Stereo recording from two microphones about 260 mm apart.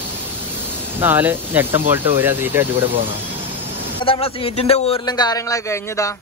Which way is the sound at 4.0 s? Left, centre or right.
Left.